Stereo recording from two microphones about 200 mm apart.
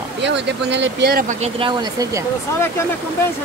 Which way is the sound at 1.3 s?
30° right (ahead or behind).